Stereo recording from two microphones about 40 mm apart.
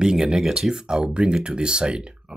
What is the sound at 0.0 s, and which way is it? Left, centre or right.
Speech, centre.